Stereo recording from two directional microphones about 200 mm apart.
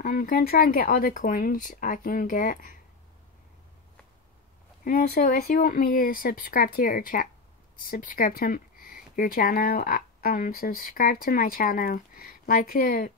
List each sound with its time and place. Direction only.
0.0 s speech: 45° left (ahead or behind)
4.8 s speech: 40° left (ahead or behind)